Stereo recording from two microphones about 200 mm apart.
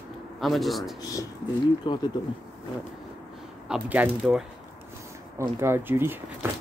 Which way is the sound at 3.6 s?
5° right (ahead or behind).